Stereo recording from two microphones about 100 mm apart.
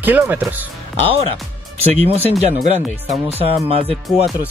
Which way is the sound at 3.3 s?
75° right (ahead or behind).